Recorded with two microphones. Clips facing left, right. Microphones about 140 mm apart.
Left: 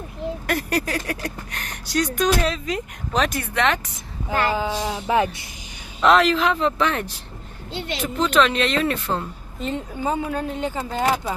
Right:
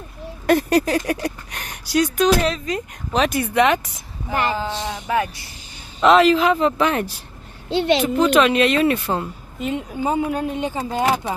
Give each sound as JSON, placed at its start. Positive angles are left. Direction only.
{"t": 0.5, "sound": "speech", "side_deg": -25}
{"t": 4.3, "sound": "a sound", "side_deg": -20}
{"t": 4.9, "sound": "speech", "side_deg": 25}
{"t": 5.9, "sound": "speech", "side_deg": 0}
{"t": 7.7, "sound": "speech", "side_deg": -75}
{"t": 8.2, "sound": "speech", "side_deg": -10}